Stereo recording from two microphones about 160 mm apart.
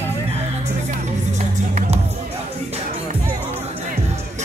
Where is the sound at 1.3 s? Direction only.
45° right (ahead or behind).